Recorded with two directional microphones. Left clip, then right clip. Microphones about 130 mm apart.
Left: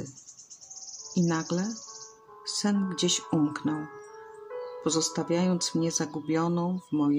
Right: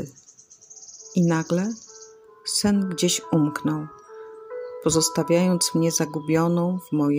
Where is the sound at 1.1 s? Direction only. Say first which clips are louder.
Right 6 dB; 50° right (ahead or behind).